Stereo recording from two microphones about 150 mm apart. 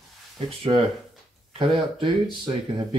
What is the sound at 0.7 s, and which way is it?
Speech, 35° right (ahead or behind).